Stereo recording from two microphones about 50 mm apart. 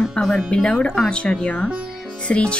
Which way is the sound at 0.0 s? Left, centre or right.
Centre.